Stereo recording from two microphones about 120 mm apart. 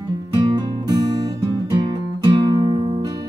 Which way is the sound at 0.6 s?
35° right (ahead or behind).